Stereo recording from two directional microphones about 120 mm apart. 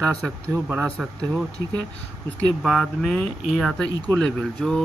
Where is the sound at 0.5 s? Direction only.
25° right (ahead or behind).